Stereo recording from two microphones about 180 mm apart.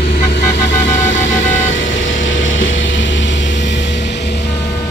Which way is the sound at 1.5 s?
90° left.